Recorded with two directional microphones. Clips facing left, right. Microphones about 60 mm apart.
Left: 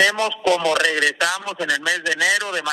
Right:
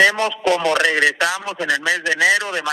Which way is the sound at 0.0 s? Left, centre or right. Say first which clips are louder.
Right 2 dB; right.